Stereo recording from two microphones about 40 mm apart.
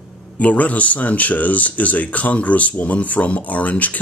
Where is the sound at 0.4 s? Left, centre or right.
Left.